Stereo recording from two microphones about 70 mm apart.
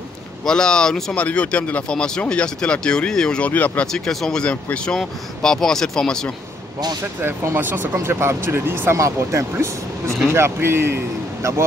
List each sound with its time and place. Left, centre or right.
0.5 s speech: centre
3.4 s speech: left
3.8 s speech: centre
7.2 s speech: right
8.9 s speech: right